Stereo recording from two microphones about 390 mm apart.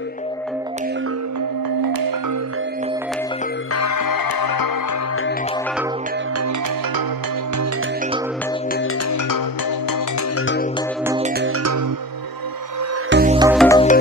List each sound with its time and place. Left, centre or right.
1.8 s music: right
3.7 s music: left
10.3 s music: left
11.1 s music: centre
11.4 s music: right
13.1 s music: right
13.4 s music: centre
13.7 s music: centre